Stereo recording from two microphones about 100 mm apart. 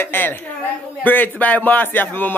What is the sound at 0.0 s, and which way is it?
A woman's voice, 20° left (ahead or behind).